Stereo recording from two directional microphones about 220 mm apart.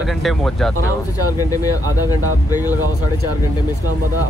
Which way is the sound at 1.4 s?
15° left (ahead or behind).